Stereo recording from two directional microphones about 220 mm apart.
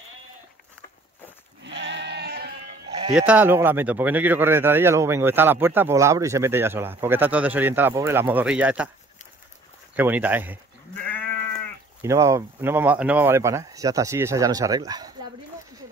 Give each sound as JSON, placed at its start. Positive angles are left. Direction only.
{"t": 1.6, "sound": "sheep", "side_deg": -55}
{"t": 3.2, "sound": "speech", "side_deg": -5}
{"t": 9.9, "sound": "speech", "side_deg": -10}
{"t": 12.0, "sound": "speech", "side_deg": -15}